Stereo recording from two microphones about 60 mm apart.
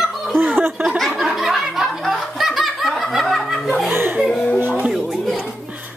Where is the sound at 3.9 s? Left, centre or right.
Right.